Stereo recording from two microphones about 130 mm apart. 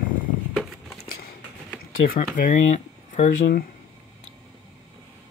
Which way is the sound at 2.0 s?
90° left.